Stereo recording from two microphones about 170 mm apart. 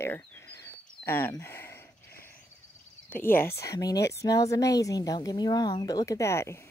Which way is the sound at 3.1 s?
10° left (ahead or behind).